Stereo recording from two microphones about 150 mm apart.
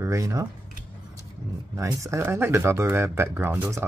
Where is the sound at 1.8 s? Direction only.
20° right (ahead or behind).